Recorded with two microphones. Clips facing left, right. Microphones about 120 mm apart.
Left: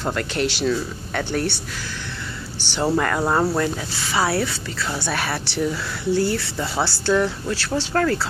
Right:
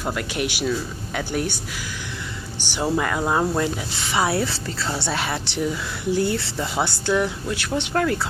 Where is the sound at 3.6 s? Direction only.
20° right (ahead or behind).